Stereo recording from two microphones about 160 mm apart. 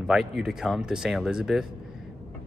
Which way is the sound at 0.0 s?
5° right (ahead or behind).